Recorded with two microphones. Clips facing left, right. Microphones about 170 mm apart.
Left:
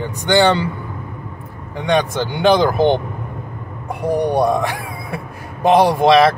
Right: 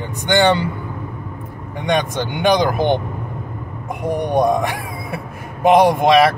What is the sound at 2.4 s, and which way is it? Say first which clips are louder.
Speech: left 2 dB; 15° right (ahead or behind).